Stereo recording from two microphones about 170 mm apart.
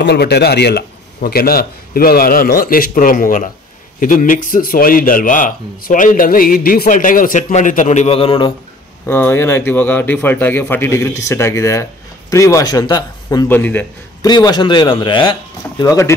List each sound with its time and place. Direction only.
0.0 s a man's voice: 75° left (ahead or behind); by 8.5 s 30° left (ahead or behind)
9.0 s a man's voice: 15° left (ahead or behind)
13.5 s a man's voice: 10° left (ahead or behind)
14.2 s speech: 25° left (ahead or behind)